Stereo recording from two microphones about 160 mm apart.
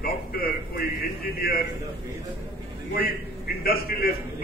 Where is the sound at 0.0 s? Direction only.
70° left (ahead or behind).